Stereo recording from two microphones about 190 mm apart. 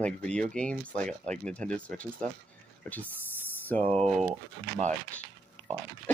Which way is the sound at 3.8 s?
35° right (ahead or behind).